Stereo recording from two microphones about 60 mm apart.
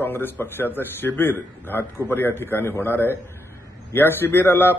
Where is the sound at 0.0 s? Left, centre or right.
Left.